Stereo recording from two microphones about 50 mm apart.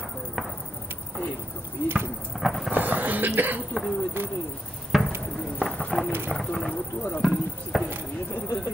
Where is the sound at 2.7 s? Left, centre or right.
Right.